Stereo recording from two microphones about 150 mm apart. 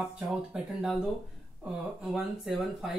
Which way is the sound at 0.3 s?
5° right (ahead or behind).